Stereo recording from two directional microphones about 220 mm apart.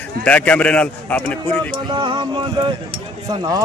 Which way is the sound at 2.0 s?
20° right (ahead or behind).